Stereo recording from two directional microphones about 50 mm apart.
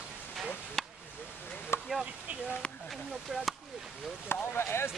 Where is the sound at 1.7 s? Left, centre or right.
Left.